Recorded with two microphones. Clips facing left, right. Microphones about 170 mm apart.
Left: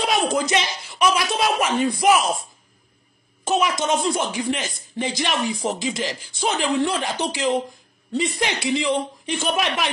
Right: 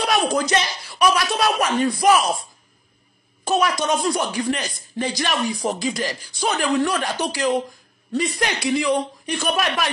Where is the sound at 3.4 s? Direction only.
15° left (ahead or behind).